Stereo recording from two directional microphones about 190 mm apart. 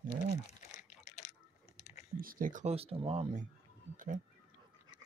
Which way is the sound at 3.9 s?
45° right (ahead or behind).